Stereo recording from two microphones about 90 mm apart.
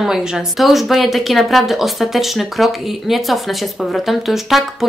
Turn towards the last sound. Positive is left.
turn(degrees=0)  # may be behind; listen again after turning